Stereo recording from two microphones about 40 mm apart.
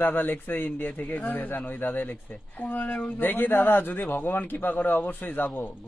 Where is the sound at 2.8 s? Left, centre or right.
Left.